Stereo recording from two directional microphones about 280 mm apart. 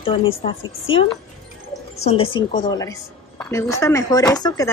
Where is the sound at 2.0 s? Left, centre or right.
Centre.